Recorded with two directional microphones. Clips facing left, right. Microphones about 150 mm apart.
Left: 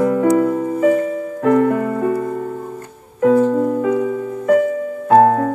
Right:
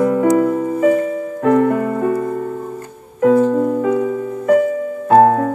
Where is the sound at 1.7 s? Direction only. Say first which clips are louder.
Right 1 dB; 35° right (ahead or behind).